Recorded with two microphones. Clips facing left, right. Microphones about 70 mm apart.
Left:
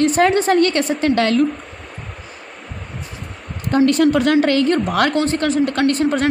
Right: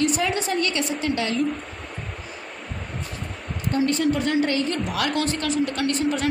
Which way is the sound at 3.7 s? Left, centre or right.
Left.